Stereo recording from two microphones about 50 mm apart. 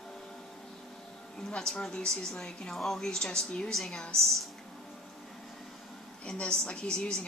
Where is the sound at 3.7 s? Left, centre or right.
Centre.